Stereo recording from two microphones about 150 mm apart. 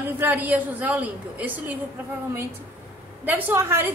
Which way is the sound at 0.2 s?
10° right (ahead or behind).